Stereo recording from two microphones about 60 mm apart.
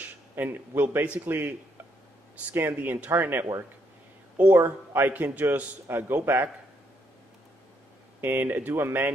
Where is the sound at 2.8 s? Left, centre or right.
Right.